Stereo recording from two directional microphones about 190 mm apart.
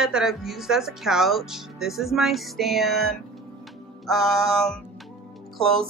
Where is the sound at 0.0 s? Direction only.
Centre (ahead or behind).